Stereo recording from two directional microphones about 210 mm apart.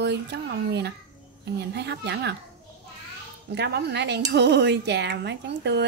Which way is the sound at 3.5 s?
55° right (ahead or behind).